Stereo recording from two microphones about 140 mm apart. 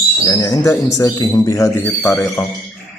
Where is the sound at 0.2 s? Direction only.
25° left (ahead or behind).